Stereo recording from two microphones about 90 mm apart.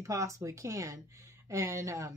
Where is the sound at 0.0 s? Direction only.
35° right (ahead or behind).